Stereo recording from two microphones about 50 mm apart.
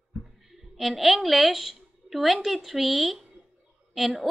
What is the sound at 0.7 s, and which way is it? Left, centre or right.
A woman's voice, centre.